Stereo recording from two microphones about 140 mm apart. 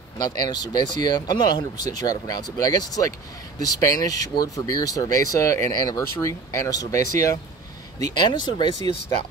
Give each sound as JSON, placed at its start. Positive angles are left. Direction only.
{"t": 0.2, "sound": "speech", "side_deg": 30}
{"t": 8.2, "sound": "speech", "side_deg": 30}